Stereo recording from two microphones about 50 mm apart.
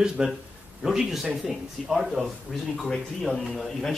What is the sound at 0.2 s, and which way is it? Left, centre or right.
A man's voice, centre.